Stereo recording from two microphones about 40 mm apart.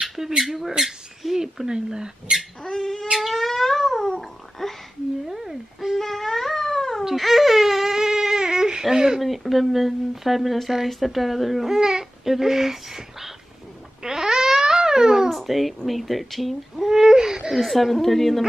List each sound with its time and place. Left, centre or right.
0.0 s squawk: centre
0.4 s speech: centre
2.6 s dog: centre
3.2 s a sound: centre
5.3 s cat: centre
5.9 s cat: centre
7.1 s crying: centre
8.8 s a sound: centre
9.2 s speech: centre
14.0 s a sound: centre
15.2 s speech: centre
17.6 s speech: centre